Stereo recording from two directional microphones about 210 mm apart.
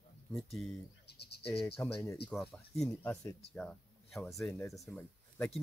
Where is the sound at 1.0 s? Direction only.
50° left (ahead or behind).